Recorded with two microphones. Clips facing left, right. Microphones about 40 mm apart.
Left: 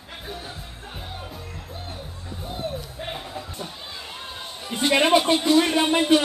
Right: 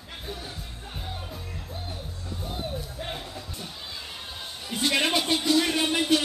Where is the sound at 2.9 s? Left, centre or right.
Centre.